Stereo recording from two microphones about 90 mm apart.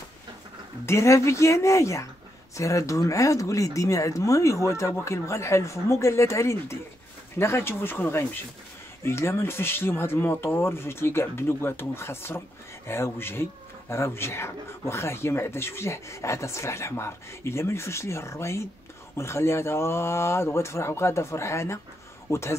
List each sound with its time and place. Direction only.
0.8 s speech: 35° left (ahead or behind)